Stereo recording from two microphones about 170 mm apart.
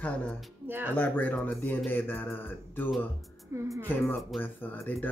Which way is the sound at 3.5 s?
15° right (ahead or behind).